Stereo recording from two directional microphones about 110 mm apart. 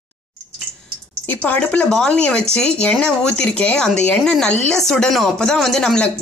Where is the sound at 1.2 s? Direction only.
15° left (ahead or behind).